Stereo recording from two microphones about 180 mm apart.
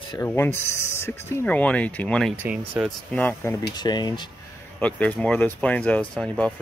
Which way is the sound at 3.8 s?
25° left (ahead or behind).